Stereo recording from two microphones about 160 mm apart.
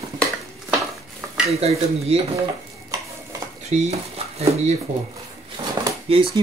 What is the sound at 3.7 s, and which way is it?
Speech, 45° right (ahead or behind).